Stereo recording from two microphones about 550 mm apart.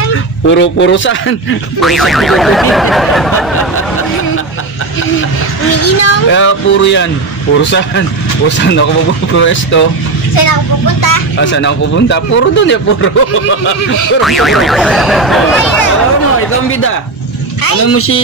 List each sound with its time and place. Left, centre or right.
0.5 s speech: centre
1.8 s speech: centre
5.7 s speech: left
8.5 s speech: centre
11.0 s speech: left
11.5 s speech: centre
14.2 s speech: centre
17.8 s speech: left